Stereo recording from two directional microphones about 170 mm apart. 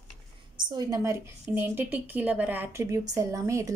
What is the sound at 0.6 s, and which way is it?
A woman's voice, 25° right (ahead or behind).